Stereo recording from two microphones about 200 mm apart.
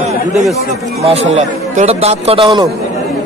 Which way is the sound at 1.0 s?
30° right (ahead or behind).